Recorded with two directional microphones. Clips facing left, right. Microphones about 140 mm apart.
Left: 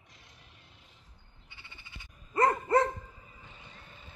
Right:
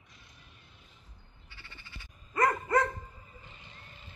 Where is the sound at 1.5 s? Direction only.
20° left (ahead or behind).